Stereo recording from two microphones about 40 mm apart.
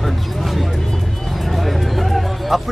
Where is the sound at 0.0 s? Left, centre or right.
Centre.